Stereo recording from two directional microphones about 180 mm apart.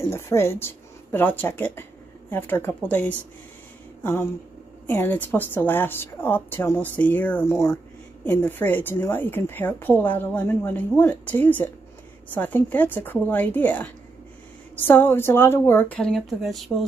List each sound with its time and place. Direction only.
0.1 s a woman's voice: 15° left (ahead or behind)